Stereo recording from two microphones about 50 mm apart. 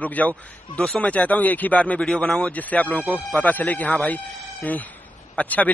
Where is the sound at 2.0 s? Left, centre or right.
Centre.